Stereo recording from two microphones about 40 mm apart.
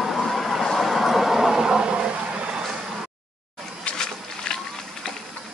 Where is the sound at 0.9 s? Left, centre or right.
Centre; by 2.5 s right.